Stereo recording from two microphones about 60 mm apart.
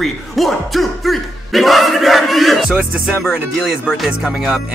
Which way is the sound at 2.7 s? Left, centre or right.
Right.